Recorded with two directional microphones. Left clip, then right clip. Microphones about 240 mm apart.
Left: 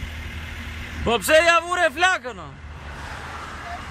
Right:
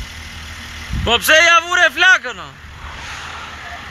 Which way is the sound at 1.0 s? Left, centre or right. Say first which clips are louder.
Right 6 dB; centre.